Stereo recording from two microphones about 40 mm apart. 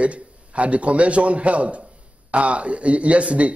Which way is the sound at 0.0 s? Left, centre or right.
Right.